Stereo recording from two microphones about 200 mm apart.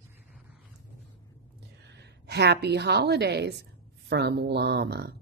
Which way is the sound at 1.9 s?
55° right (ahead or behind).